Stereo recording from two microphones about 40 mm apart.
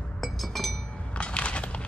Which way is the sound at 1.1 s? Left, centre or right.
Left.